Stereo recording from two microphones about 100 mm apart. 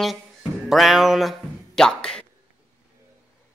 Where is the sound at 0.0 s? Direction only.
Centre (ahead or behind).